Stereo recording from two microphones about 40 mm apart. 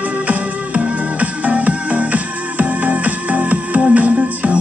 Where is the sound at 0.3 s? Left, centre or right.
Right.